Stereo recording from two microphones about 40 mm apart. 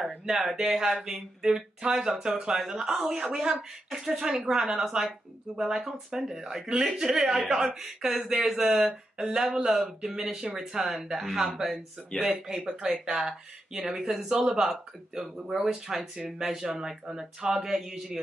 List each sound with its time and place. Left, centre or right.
0.0 s speech: centre
12.1 s speech: centre
13.0 s speech: centre